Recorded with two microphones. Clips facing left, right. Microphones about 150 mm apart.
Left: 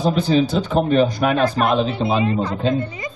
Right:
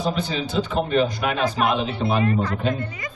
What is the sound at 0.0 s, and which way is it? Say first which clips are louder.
A man's voice: left 8 dB; 35° left (ahead or behind).